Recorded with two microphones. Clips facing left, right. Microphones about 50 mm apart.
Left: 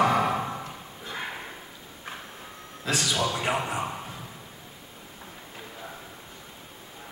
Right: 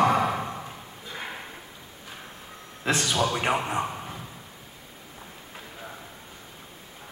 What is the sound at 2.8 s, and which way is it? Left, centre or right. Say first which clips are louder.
Speech: right 2 dB; right.